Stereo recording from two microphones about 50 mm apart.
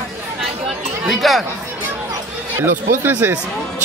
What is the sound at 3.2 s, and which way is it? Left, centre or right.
Speech, right.